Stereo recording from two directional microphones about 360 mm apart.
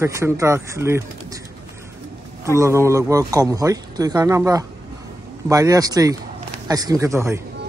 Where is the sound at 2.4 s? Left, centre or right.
Centre.